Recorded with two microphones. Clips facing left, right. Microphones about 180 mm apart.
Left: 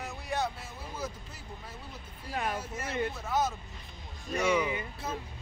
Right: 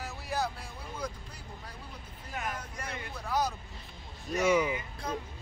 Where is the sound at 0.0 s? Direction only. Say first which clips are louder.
Left 1 dB; centre (ahead or behind).